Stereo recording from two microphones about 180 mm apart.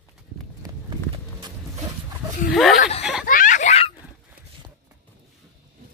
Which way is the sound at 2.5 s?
Centre (ahead or behind).